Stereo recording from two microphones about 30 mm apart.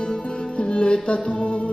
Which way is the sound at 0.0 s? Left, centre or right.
Left.